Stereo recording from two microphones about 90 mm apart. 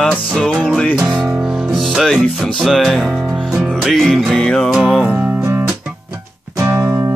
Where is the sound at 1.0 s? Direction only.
10° right (ahead or behind).